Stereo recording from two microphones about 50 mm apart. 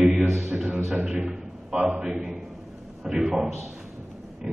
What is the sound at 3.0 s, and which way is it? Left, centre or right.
Speech, centre.